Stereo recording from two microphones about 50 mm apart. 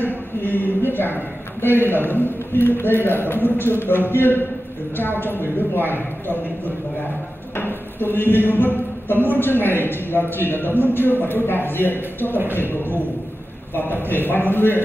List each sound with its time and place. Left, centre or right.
0.0 s a woman's voice: left
7.5 s speech: left
13.7 s speech: left